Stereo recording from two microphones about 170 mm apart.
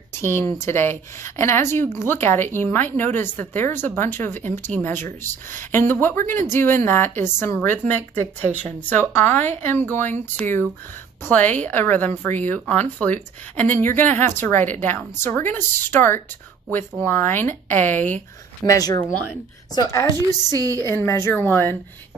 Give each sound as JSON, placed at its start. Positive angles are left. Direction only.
{"t": 0.1, "sound": "a sound", "side_deg": 15}
{"t": 0.5, "sound": "speech", "side_deg": 15}
{"t": 18.7, "sound": "a woman's voice", "side_deg": 20}
{"t": 20.5, "sound": "a woman's voice", "side_deg": -20}
{"t": 20.9, "sound": "speech", "side_deg": 15}